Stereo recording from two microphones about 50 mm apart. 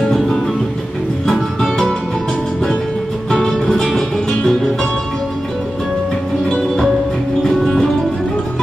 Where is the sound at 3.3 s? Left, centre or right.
Centre.